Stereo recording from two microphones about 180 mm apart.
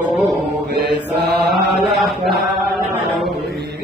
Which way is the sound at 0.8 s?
70° right (ahead or behind).